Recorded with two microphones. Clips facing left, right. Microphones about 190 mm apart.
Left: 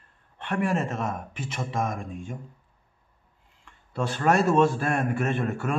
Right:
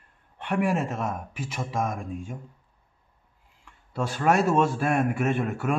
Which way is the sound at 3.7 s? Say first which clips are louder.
Left 1 dB; 5° right (ahead or behind).